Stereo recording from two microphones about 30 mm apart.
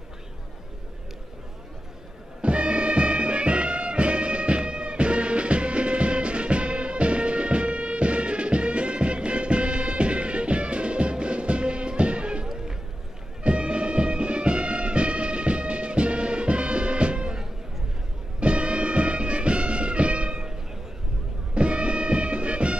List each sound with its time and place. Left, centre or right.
2.4 s music: right
18.4 s music: right
21.5 s music: right